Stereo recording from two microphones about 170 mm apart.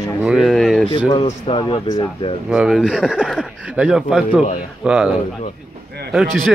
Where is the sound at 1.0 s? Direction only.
20° left (ahead or behind).